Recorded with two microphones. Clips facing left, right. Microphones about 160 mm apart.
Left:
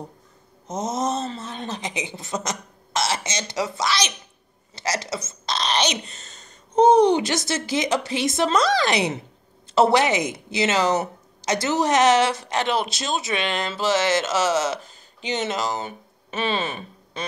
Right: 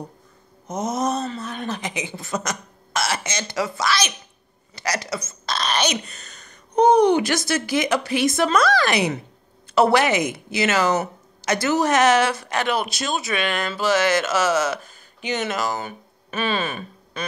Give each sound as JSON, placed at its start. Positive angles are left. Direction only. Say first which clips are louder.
{"t": 0.7, "sound": "a woman's voice", "louder": "right 1 dB", "side_deg": 20}